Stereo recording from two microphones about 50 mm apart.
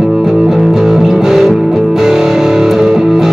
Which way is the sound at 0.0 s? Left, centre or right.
Centre.